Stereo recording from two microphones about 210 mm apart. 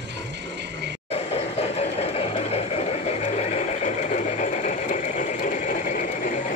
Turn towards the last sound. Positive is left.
turn(degrees=35)  # may be behind; listen again after turning